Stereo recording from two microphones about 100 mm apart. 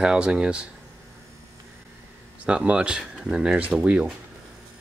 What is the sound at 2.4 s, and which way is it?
Speech, 10° right (ahead or behind).